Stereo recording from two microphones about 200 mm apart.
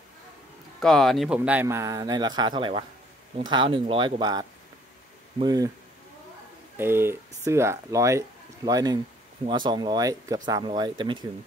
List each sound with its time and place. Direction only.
0.7 s speech: centre (ahead or behind); by 5.7 s 20° right (ahead or behind)
6.8 s speech: 10° right (ahead or behind)